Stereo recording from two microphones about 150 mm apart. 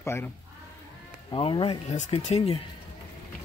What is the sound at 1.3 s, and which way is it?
Speech, 35° left (ahead or behind).